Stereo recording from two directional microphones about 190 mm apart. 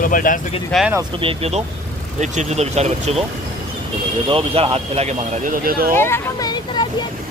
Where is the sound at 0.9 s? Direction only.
25° right (ahead or behind).